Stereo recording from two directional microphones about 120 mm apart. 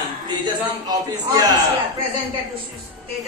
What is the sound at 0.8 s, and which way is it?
Speech, 30° right (ahead or behind).